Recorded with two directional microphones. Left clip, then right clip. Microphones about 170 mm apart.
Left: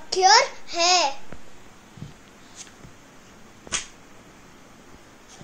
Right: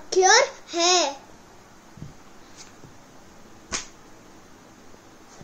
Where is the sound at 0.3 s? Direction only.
45° right (ahead or behind).